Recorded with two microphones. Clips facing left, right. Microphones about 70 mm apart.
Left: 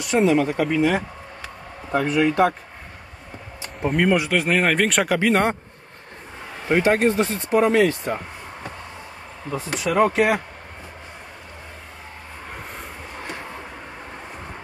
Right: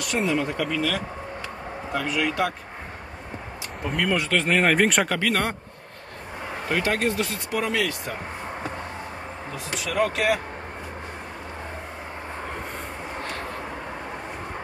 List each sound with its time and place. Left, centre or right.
0.0 s speech: left
1.9 s speech: left
4.0 s speech: centre
5.2 s speech: left
6.7 s speech: left
9.9 s speech: left